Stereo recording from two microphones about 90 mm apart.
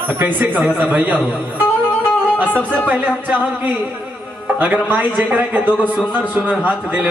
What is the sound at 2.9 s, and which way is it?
A man's voice, 20° right (ahead or behind).